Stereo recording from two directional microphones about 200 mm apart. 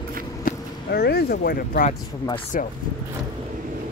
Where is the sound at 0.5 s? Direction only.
50° left (ahead or behind).